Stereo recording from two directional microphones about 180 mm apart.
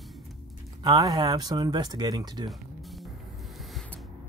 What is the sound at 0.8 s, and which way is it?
Speech, 20° right (ahead or behind).